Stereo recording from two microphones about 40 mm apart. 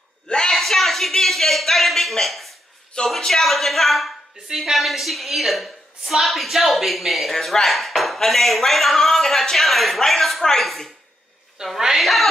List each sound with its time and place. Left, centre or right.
0.3 s a sound: centre
0.6 s speech: centre
2.9 s a woman's voice: left
3.3 s a woman's voice: centre
11.6 s a woman's voice: centre